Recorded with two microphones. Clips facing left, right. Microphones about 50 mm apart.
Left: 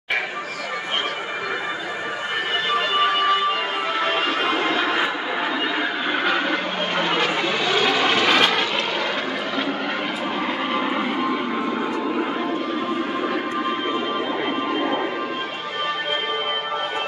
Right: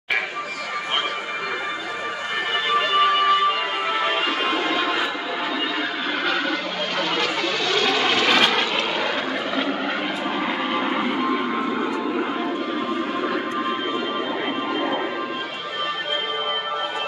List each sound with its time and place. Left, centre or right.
2.7 s music: centre
4.6 s change ringing: centre
7.7 s vehicle: centre
10.4 s vehicle: centre
13.2 s music: centre